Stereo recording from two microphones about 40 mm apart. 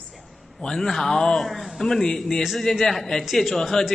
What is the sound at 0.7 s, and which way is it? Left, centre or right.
A man's voice, centre.